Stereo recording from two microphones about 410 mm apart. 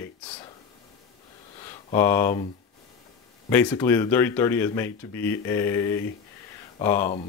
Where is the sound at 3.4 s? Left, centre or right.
Centre.